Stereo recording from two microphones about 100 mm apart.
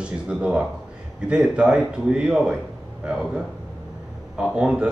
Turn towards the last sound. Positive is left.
turn(degrees=-10)  # may be behind; listen again after turning